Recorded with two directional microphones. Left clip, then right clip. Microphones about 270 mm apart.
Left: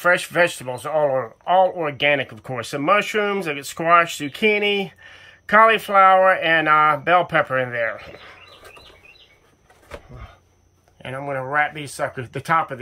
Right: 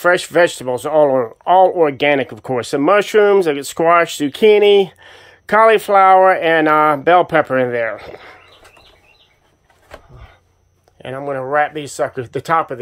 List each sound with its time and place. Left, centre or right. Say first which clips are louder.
0.0 s speech: right 5 dB; right
11.0 s speech: right 4 dB; right